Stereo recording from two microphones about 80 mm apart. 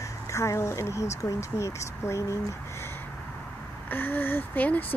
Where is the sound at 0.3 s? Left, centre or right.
Left.